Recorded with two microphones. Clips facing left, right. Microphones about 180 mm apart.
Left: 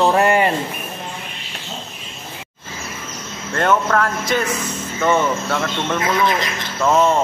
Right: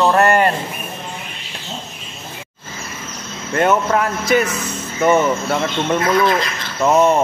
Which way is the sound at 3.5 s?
10° right (ahead or behind).